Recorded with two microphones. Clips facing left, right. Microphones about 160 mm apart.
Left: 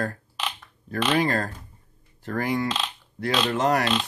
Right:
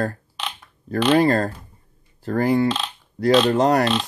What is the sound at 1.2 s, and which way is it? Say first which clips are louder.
Speech: right 6 dB; 35° right (ahead or behind).